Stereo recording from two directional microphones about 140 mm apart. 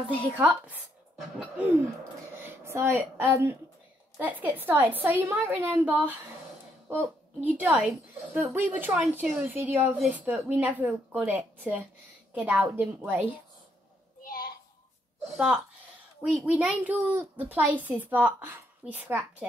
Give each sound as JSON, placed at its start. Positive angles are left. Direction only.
{"t": 0.3, "sound": "a woman's voice", "side_deg": -10}
{"t": 2.4, "sound": "a woman's voice", "side_deg": -20}
{"t": 14.2, "sound": "a sound", "side_deg": 90}
{"t": 15.3, "sound": "a woman's voice", "side_deg": -5}